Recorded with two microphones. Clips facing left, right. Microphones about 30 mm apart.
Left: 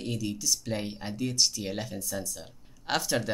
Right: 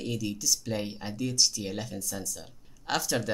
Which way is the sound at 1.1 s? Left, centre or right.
Centre.